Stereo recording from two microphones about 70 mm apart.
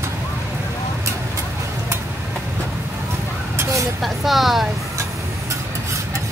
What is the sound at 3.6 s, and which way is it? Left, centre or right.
Vehicle, right.